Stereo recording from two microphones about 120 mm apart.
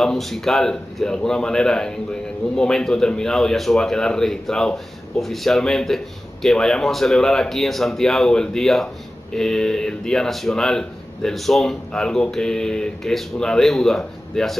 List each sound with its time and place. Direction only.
0.0 s speech: centre (ahead or behind)